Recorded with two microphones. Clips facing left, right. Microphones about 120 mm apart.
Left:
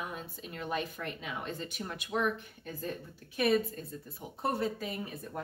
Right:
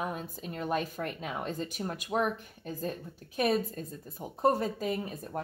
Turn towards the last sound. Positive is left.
turn(degrees=-45)  # may be behind; listen again after turning